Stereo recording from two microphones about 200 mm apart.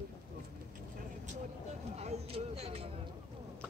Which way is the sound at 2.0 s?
30° right (ahead or behind).